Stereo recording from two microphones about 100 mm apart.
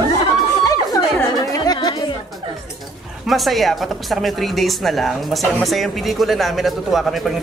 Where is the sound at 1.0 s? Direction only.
30° left (ahead or behind).